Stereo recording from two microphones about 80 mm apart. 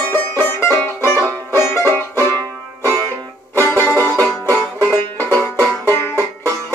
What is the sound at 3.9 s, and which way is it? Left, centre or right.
Music, left.